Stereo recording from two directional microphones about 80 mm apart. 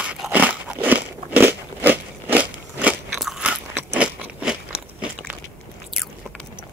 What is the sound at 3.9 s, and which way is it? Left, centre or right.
Crunch, centre.